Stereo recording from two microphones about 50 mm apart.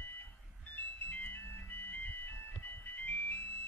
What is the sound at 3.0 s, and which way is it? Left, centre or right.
Music, left.